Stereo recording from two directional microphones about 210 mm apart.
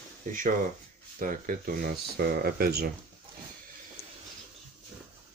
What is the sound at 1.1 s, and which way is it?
Speech, 40° right (ahead or behind).